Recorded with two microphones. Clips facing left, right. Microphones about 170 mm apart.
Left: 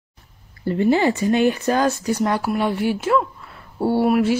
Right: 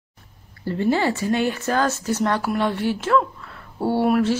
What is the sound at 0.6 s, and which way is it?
Speech, 15° left (ahead or behind).